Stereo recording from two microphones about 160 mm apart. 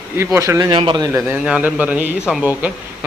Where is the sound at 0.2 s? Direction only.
15° right (ahead or behind).